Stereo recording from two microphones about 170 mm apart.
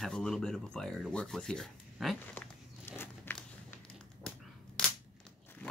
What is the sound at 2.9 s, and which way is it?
Crumpling, 15° left (ahead or behind).